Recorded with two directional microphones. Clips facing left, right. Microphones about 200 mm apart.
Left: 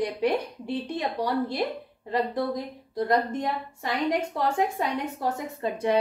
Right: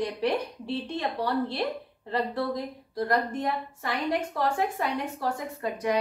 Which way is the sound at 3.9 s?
10° left (ahead or behind).